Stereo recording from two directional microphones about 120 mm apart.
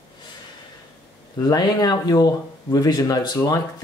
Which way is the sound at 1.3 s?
35° left (ahead or behind).